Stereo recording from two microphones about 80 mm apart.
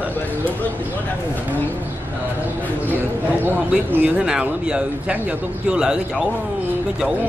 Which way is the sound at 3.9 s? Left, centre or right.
Centre.